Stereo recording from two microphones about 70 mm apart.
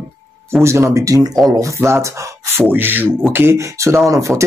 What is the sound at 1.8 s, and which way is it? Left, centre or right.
Speech, right.